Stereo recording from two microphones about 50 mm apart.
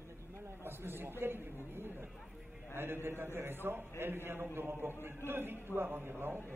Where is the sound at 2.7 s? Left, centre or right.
Right.